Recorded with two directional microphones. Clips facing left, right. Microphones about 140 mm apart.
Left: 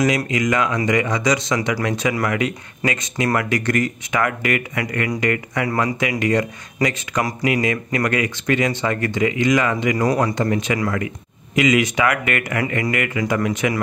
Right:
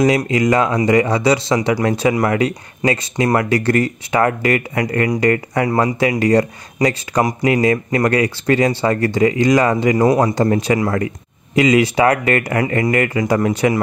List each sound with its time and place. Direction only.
0.3 s speech: 35° right (ahead or behind)